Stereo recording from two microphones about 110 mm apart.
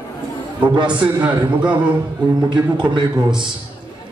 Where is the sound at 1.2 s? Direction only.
15° right (ahead or behind).